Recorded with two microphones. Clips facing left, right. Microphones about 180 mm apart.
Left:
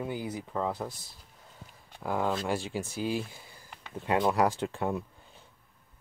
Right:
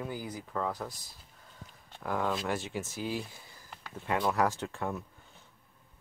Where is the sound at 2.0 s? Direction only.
20° left (ahead or behind).